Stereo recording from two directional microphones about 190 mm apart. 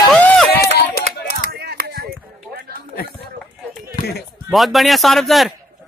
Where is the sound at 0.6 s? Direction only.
55° left (ahead or behind).